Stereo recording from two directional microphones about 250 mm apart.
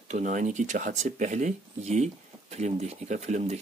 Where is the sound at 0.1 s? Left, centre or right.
Right.